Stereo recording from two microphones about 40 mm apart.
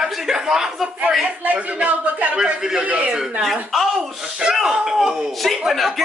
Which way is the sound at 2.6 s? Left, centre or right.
Centre.